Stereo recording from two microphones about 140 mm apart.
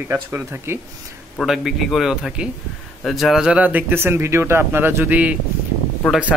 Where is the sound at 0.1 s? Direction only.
15° right (ahead or behind).